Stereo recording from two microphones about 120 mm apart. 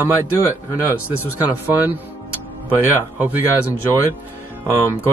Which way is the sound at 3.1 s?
15° right (ahead or behind).